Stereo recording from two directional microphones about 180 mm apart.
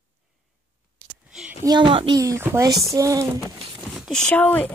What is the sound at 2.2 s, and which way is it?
Speech, 15° right (ahead or behind).